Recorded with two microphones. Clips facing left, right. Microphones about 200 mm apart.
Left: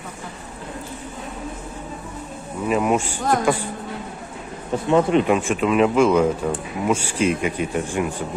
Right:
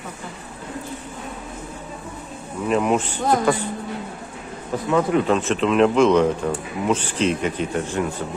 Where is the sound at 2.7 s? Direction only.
5° left (ahead or behind).